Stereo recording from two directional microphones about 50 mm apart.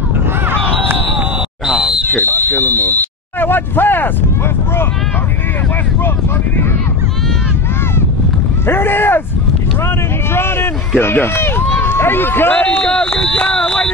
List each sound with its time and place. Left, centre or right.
1.7 s a sound: centre
2.1 s speech: left
8.6 s speech: left
10.3 s speech: left
12.4 s speech: left